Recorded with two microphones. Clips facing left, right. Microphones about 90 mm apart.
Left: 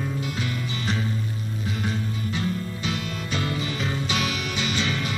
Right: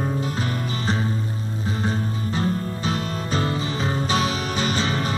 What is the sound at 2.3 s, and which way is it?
Music, 35° right (ahead or behind).